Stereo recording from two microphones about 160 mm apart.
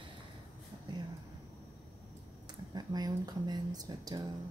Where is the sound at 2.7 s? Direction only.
25° right (ahead or behind).